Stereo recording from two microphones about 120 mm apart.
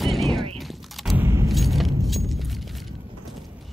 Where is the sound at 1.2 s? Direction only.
20° right (ahead or behind).